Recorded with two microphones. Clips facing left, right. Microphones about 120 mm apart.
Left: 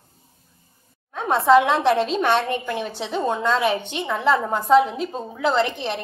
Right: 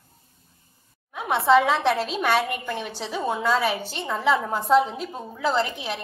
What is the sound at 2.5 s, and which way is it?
Speech, 25° left (ahead or behind).